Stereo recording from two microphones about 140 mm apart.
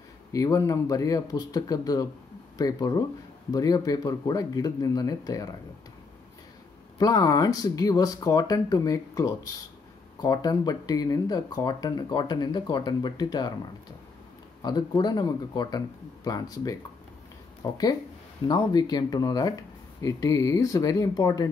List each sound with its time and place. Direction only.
0.3 s speech: 25° left (ahead or behind)
7.0 s speech: 30° left (ahead or behind)
14.6 s speech: 30° left (ahead or behind)